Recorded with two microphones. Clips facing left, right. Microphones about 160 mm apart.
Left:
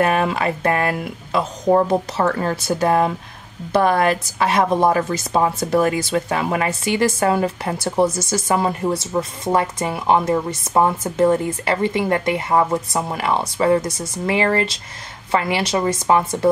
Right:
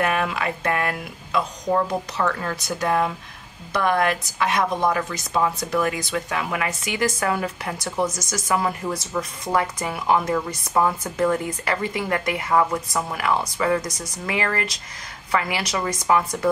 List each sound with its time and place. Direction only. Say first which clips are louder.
0.0 s a woman's voice: left 5 dB; 35° left (ahead or behind)